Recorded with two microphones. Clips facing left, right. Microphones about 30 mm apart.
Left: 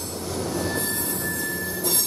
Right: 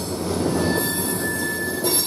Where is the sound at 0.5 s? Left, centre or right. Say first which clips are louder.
Right 4 dB; right.